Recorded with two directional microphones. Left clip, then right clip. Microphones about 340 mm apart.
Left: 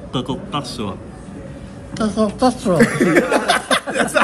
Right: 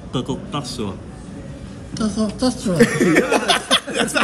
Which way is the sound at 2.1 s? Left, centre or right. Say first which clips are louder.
Left 6 dB; centre.